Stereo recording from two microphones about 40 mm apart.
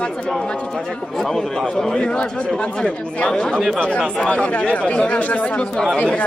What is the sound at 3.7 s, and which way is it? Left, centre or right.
Speech, left.